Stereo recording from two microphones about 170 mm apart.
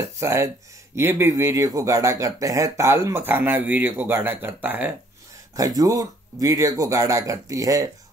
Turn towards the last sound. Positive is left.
turn(degrees=-20)  # may be behind; listen again after turning